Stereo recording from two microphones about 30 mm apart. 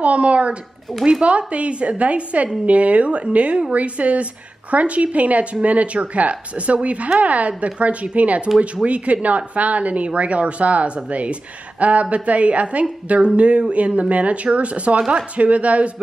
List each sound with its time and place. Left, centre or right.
0.0 s speech: right
15.0 s speech: right
15.3 s speech: right